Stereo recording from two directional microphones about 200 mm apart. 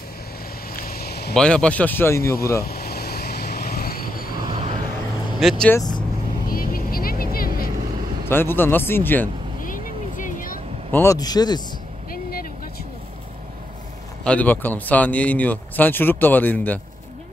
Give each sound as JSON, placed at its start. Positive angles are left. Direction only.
{"t": 0.7, "sound": "a sound", "side_deg": 50}
{"t": 1.3, "sound": "speech", "side_deg": 5}
{"t": 2.6, "sound": "vehicle", "side_deg": 50}
{"t": 5.4, "sound": "speech", "side_deg": 5}
{"t": 5.8, "sound": "speech", "side_deg": 20}
{"t": 6.5, "sound": "vehicle", "side_deg": 45}
{"t": 8.3, "sound": "speech", "side_deg": 10}
{"t": 9.6, "sound": "vehicle", "side_deg": 40}
{"t": 10.9, "sound": "speech", "side_deg": 15}
{"t": 12.1, "sound": "vehicle", "side_deg": 45}
{"t": 14.2, "sound": "speech", "side_deg": 5}